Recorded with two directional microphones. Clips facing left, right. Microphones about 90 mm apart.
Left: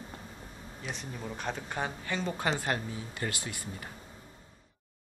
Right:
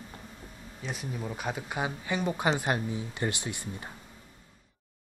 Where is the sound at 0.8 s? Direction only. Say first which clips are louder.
Right 3 dB; 5° right (ahead or behind); by 3.9 s 20° right (ahead or behind).